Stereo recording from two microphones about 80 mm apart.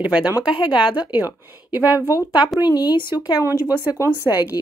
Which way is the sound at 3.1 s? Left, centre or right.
Left.